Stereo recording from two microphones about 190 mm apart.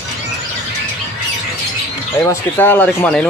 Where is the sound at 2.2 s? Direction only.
10° left (ahead or behind).